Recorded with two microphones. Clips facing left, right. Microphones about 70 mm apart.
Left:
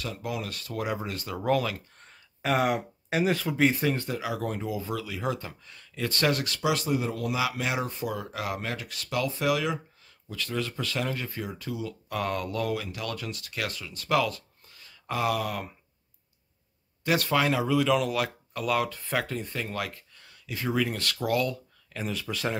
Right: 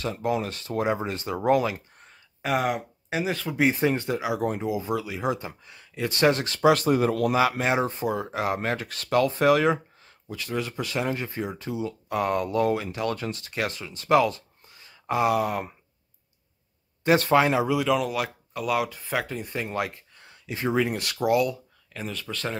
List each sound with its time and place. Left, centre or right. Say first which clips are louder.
0.0 s speech: right 7 dB; right
2.0 s a sound: right 1 dB; centre
3.6 s speech: right 3 dB; right
6.7 s speech: right 6 dB; right
7.3 s speech: right 6 dB; right
10.3 s speech: right 2 dB; centre
17.0 s speech: right 5 dB; right
17.6 s speech: right 1 dB; centre
19.5 s speech: right 4 dB; right
21.9 s speech: left 1 dB; centre